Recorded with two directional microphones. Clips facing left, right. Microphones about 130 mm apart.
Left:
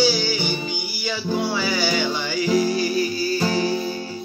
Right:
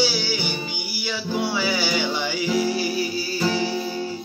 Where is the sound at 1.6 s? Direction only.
10° right (ahead or behind).